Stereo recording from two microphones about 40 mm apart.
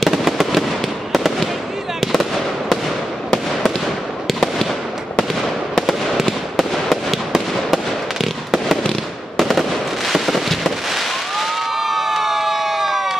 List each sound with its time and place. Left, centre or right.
0.0 s fireworks: centre
3.8 s fireworks: centre
9.4 s fireworks: centre